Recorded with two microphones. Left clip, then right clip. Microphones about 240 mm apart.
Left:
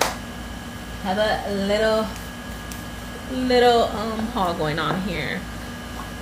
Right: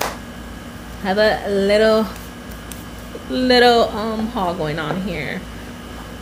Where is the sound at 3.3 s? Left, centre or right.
Right.